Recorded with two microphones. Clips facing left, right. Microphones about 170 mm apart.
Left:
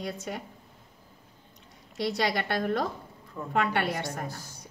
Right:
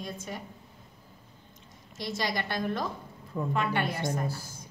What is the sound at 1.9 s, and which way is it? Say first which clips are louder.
A woman's voice: left 4 dB; 65° left (ahead or behind).